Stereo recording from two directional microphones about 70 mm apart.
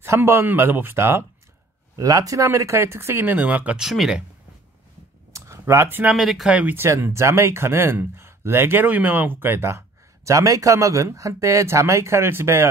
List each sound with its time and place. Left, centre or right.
0.0 s speech: right
2.0 s speech: right
3.3 s speech: right
3.7 s speech: centre
5.3 s a sound: right
6.1 s speech: centre
6.5 s speech: right
6.8 s speech: right